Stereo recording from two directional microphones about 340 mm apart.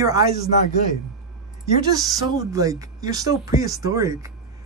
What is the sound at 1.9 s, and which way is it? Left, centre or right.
Speech, centre.